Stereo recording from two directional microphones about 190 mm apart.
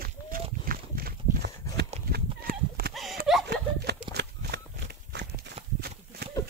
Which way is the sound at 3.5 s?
60° right (ahead or behind).